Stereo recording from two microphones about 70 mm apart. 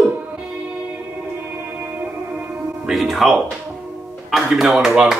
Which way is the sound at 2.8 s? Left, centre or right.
Centre.